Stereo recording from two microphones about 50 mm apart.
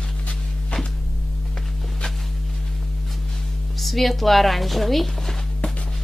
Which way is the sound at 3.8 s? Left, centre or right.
Centre.